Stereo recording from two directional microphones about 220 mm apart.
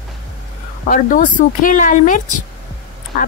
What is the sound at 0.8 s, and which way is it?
Speech, 35° left (ahead or behind).